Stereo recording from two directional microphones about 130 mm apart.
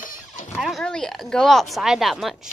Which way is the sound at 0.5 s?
Centre (ahead or behind).